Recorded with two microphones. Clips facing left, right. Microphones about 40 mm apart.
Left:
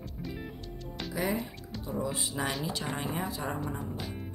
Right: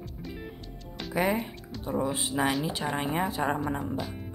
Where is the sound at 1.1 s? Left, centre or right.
Right.